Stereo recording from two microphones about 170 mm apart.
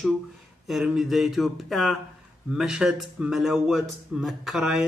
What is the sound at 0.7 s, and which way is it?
A man's voice, centre (ahead or behind).